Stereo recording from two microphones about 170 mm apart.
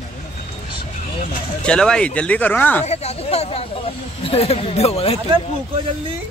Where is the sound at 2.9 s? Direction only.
40° left (ahead or behind).